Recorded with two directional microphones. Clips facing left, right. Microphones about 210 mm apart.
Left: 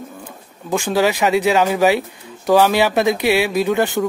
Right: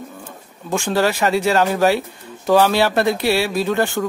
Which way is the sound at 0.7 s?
10° left (ahead or behind).